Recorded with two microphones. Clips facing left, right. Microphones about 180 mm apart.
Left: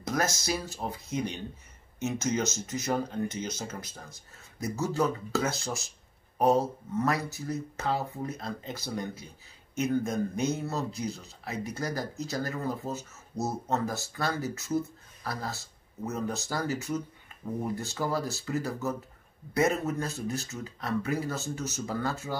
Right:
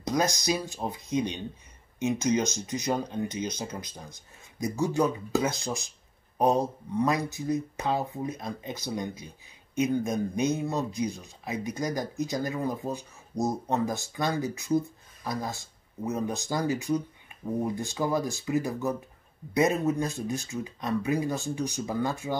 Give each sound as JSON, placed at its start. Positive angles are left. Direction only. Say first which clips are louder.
{"t": 0.0, "sound": "speech", "louder": "right 3 dB", "side_deg": -15}